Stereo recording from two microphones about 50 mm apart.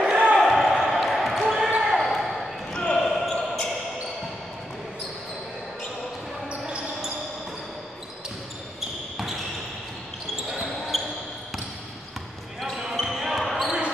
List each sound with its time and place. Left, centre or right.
0.0 s basketball bounce: right
0.4 s basketball bounce: centre
1.8 s basketball bounce: centre
2.0 s basketball bounce: centre
2.7 s basketball bounce: centre
3.1 s basketball bounce: centre
6.6 s basketball bounce: centre
10.9 s basketball bounce: centre
12.5 s basketball bounce: centre
13.7 s basketball bounce: centre